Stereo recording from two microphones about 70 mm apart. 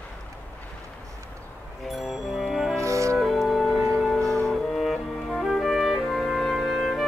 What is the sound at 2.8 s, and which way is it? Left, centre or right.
Music, right.